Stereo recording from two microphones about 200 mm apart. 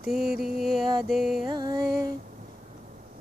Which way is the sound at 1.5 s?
20° right (ahead or behind).